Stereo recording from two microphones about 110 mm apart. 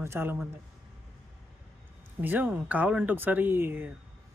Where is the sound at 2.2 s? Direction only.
15° right (ahead or behind).